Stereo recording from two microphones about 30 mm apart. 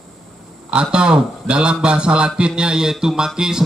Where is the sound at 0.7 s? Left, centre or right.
Right.